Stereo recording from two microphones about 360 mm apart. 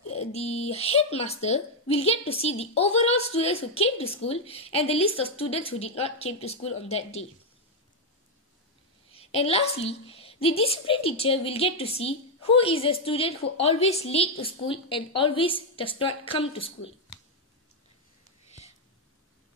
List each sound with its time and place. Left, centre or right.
0.1 s a woman's voice: centre
9.1 s a woman's voice: centre